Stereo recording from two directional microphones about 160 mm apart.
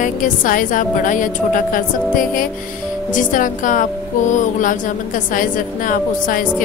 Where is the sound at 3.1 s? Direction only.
55° left (ahead or behind).